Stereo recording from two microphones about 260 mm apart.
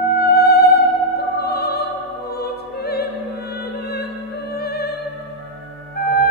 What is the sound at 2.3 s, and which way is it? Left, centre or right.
Music, left.